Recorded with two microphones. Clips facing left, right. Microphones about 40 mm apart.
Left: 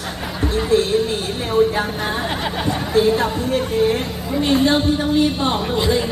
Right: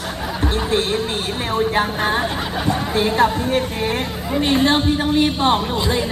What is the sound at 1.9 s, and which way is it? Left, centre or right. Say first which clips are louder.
Speech: right 4 dB; right.